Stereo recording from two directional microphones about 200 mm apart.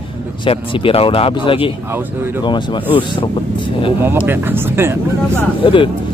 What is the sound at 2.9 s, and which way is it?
Speech, 25° left (ahead or behind).